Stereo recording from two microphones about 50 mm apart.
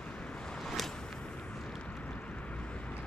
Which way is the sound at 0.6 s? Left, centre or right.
Centre.